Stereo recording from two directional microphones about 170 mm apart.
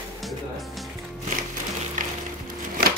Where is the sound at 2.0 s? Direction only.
50° right (ahead or behind).